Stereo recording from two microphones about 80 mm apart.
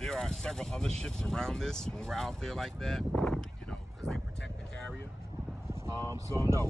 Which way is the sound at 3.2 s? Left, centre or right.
Centre.